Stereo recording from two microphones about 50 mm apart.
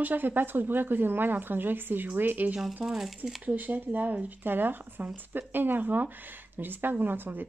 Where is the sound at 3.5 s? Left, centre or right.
Right.